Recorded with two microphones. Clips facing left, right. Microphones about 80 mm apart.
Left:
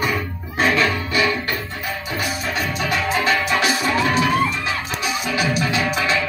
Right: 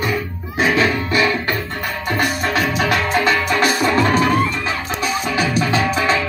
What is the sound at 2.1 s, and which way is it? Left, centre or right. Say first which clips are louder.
Music: right 6 dB; right.